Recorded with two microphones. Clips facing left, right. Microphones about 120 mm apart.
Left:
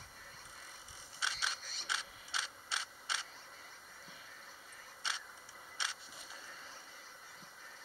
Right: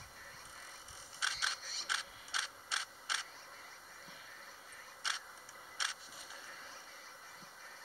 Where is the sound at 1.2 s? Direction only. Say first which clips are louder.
Left 1 dB; 30° left (ahead or behind).